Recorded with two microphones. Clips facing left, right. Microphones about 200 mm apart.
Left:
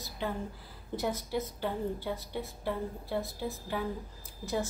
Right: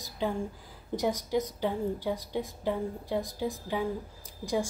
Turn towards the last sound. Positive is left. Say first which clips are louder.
# right 3 dB
turn(degrees=-15)  # may be behind; listen again after turning